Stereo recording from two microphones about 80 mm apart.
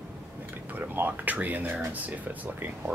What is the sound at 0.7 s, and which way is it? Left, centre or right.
Speech, right.